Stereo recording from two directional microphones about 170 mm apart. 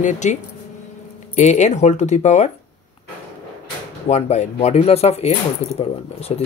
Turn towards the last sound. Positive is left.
turn(degrees=35)  # may be behind; listen again after turning